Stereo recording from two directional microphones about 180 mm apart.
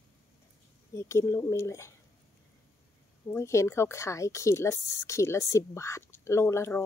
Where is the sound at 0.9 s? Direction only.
15° left (ahead or behind).